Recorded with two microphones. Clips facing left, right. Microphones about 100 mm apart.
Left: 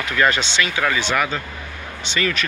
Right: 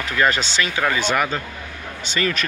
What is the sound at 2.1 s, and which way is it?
Speech, 40° right (ahead or behind).